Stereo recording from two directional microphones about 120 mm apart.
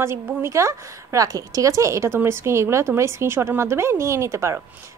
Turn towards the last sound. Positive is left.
turn(degrees=-25)  # may be behind; listen again after turning